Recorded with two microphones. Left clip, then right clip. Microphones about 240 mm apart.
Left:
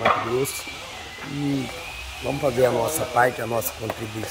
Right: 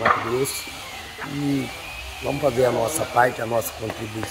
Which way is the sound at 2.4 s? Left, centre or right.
Centre.